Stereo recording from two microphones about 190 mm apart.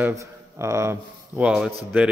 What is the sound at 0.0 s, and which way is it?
A man's voice, 15° right (ahead or behind).